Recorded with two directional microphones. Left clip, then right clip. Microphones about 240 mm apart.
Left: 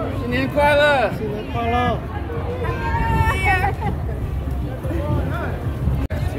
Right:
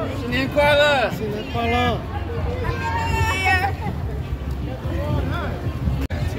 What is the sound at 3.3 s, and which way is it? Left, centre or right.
Vehicle, centre.